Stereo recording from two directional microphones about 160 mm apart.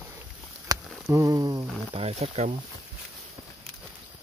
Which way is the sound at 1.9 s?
40° right (ahead or behind).